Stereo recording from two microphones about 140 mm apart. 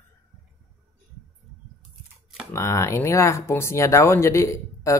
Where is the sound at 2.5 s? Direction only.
20° left (ahead or behind).